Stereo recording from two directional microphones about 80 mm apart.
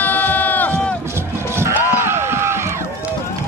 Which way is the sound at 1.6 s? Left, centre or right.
Right.